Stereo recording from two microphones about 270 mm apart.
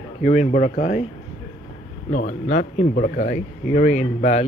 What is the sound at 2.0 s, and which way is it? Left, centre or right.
Speech, left.